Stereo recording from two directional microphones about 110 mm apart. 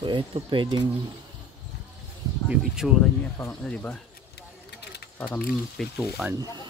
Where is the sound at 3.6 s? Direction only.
10° left (ahead or behind).